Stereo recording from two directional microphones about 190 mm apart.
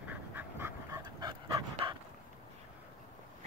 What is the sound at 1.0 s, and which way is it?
Dog, 20° right (ahead or behind).